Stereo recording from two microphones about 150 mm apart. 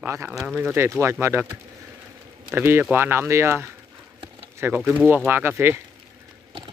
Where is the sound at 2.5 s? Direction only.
15° right (ahead or behind).